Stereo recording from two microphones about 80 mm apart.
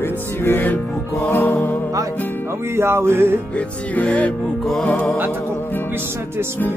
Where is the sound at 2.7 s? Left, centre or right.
Right.